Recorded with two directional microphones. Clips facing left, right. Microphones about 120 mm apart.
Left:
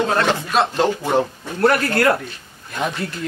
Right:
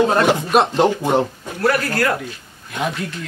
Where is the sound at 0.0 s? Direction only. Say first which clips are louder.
Right 3 dB; 15° right (ahead or behind).